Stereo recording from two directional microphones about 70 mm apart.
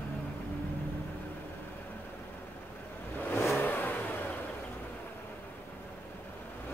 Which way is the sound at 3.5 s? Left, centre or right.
Left.